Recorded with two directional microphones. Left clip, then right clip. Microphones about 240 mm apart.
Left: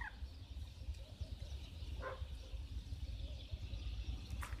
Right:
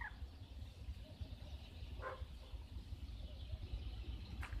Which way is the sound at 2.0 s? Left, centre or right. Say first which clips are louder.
Left 1 dB; right.